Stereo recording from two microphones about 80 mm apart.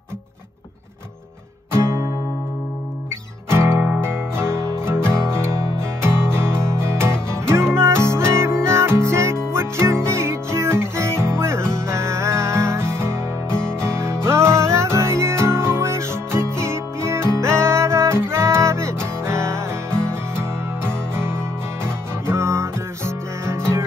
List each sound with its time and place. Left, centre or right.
1.7 s music: right
3.4 s music: right
6.5 s music: centre
6.8 s music: right
13.5 s music: centre
13.7 s music: right